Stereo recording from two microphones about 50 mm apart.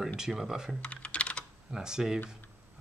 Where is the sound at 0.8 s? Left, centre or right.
Left.